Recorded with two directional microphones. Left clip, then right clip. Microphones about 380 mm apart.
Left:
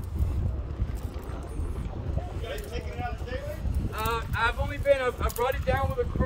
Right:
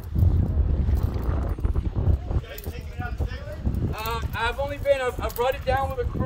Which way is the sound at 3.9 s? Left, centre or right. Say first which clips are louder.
Left 1 dB; right.